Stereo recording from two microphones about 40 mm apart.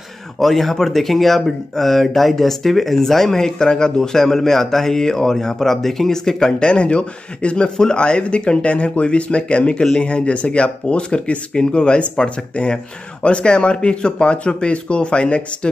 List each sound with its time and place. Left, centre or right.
0.4 s speech: centre
6.7 s speech: left